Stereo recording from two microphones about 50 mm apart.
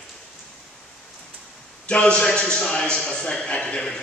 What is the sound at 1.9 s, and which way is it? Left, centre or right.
A man's voice, left.